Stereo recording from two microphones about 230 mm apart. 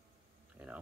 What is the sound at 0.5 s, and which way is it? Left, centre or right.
Speech, centre.